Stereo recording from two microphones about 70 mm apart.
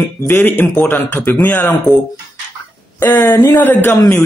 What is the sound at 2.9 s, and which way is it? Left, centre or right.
Speech, left.